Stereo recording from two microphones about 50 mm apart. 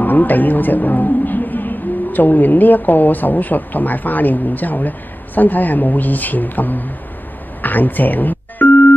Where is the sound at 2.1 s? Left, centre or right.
Left.